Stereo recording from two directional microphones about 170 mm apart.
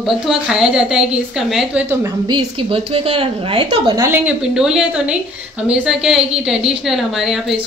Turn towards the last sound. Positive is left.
turn(degrees=0)  # may be behind; listen again after turning